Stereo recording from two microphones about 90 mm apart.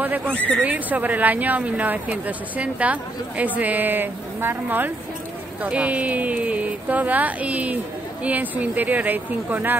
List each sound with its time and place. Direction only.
0.0 s a sound: 20° right (ahead or behind)
0.3 s speech: 15° left (ahead or behind)
0.6 s speech: 15° right (ahead or behind)